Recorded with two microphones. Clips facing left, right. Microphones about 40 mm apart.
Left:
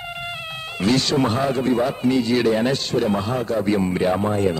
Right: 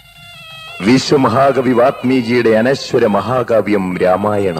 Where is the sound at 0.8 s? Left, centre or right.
Right.